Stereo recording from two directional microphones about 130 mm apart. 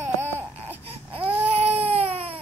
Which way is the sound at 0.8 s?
45° right (ahead or behind).